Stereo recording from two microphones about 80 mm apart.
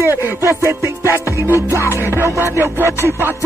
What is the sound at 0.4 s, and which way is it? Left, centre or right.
Music, right.